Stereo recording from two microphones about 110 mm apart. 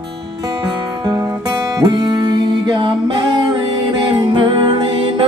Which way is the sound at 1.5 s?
40° right (ahead or behind).